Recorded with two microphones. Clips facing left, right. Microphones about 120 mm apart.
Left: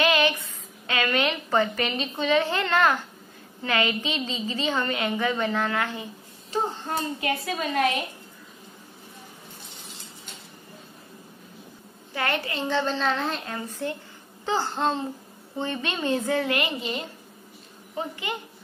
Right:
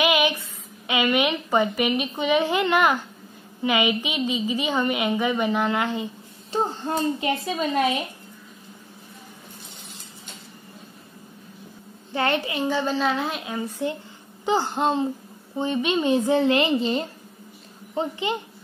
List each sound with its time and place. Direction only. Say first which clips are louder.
0.0 s a sound: right 1 dB; 15° right (ahead or behind)
0.8 s a woman's voice: right 3 dB; 15° right (ahead or behind)
12.1 s a woman's voice: right 4 dB; 25° right (ahead or behind)